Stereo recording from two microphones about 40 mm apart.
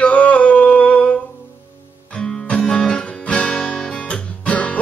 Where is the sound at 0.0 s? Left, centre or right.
Left.